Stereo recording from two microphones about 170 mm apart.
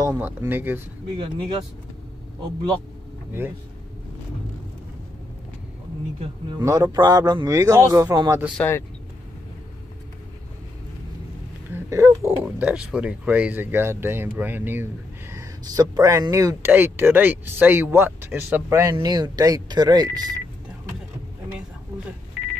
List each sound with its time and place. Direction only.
0.0 s speech: 20° right (ahead or behind)
1.1 s a man's voice: 30° right (ahead or behind)
6.1 s speech: 35° right (ahead or behind)
6.6 s a man's voice: 20° right (ahead or behind)
8.5 s speech: 15° left (ahead or behind)
11.7 s a man's voice: 15° right (ahead or behind)